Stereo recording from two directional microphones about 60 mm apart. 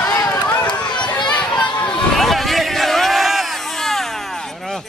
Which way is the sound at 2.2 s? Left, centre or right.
Centre.